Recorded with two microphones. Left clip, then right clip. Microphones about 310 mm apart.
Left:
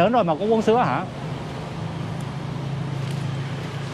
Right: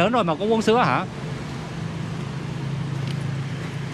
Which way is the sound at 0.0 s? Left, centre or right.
Centre.